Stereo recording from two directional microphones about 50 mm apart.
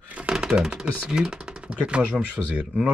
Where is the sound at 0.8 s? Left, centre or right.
Centre.